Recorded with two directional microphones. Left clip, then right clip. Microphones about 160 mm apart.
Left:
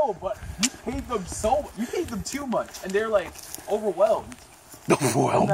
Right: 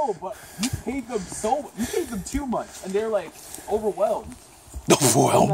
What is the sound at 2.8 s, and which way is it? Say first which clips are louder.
Speech: right 1 dB; 20° left (ahead or behind).